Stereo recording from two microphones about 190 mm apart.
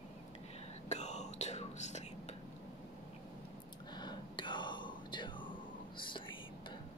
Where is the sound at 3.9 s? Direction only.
20° left (ahead or behind).